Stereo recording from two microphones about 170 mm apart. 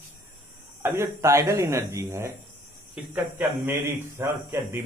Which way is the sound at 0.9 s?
15° right (ahead or behind).